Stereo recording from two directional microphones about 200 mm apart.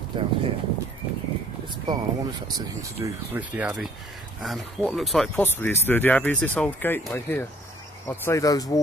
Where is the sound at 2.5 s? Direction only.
15° right (ahead or behind).